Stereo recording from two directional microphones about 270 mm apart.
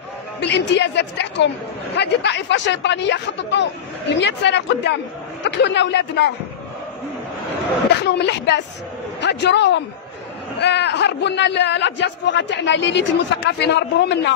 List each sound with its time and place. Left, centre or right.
0.4 s a man's voice: left
8.0 s a man's voice: left